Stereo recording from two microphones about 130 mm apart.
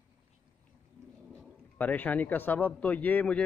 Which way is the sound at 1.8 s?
10° left (ahead or behind).